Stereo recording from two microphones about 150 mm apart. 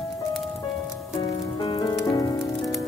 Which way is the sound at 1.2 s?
30° left (ahead or behind).